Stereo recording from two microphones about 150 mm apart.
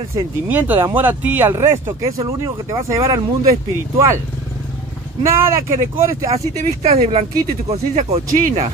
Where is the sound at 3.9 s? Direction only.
20° right (ahead or behind).